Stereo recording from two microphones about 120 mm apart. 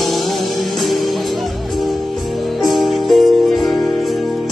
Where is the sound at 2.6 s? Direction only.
Centre (ahead or behind).